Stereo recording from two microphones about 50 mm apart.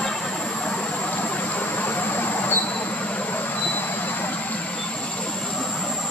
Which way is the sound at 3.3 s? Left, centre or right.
Left.